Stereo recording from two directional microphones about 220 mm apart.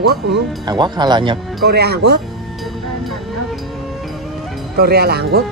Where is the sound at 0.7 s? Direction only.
20° right (ahead or behind).